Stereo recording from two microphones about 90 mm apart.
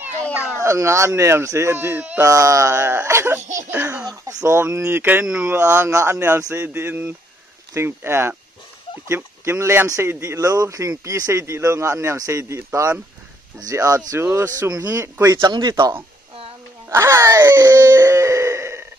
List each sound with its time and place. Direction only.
0.6 s speech: 35° right (ahead or behind)
2.2 s speech: 35° right (ahead or behind)
4.1 s speech: 40° right (ahead or behind)
4.6 s speech: 30° right (ahead or behind)
15.4 s speech: 50° right (ahead or behind)
16.9 s speech: 30° right (ahead or behind)
17.9 s a sound: 35° right (ahead or behind)